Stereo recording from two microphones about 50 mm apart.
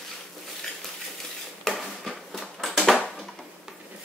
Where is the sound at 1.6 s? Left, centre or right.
Centre.